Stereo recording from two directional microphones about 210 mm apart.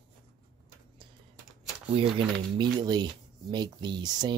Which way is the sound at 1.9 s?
25° right (ahead or behind).